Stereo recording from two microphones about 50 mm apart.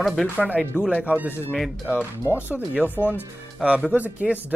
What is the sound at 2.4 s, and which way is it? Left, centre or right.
Speech, right.